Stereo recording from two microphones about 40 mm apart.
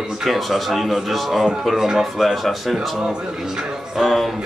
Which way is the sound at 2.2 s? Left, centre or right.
Centre.